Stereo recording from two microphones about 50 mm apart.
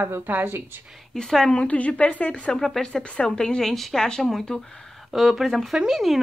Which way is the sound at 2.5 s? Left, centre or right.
Centre.